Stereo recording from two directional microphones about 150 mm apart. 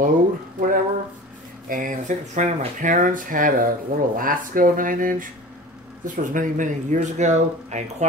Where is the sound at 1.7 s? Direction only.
60° right (ahead or behind).